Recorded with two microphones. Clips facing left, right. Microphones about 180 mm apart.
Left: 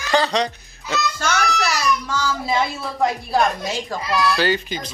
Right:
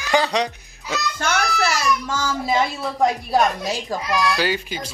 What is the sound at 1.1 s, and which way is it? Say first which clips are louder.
Child singing: right 2 dB; 50° right (ahead or behind).